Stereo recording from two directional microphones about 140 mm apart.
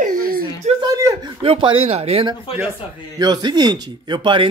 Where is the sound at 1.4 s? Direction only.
40° right (ahead or behind).